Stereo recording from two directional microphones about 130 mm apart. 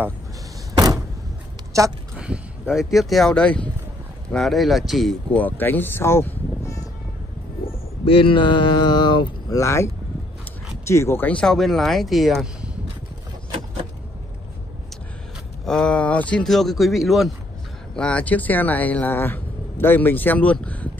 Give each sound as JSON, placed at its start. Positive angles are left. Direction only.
{"t": 1.7, "sound": "speech", "side_deg": -25}
{"t": 2.1, "sound": "a sound", "side_deg": -10}
{"t": 2.7, "sound": "speech", "side_deg": 0}
{"t": 5.4, "sound": "speech", "side_deg": 15}
{"t": 8.0, "sound": "speech", "side_deg": 45}
{"t": 9.6, "sound": "speech", "side_deg": 25}
{"t": 10.9, "sound": "speech", "side_deg": 20}
{"t": 15.6, "sound": "speech", "side_deg": 5}